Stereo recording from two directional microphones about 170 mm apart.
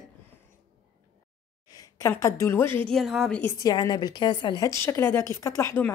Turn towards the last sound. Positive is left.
turn(degrees=15)  # may be behind; listen again after turning